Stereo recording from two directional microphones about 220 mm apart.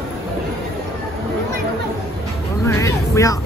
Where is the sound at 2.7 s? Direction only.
15° left (ahead or behind).